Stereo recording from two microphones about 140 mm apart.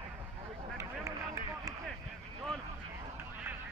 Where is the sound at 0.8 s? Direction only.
25° right (ahead or behind).